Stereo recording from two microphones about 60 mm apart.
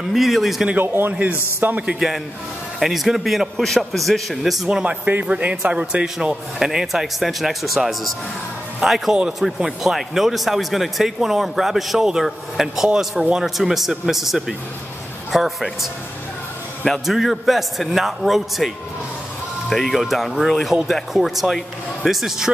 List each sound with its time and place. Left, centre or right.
0.1 s speech: centre
1.6 s a man's voice: right
2.0 s speech: centre
4.6 s a man's voice: centre
6.6 s speech: centre
19.7 s speech: centre